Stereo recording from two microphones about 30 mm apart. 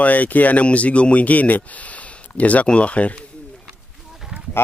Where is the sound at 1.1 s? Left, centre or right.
Left.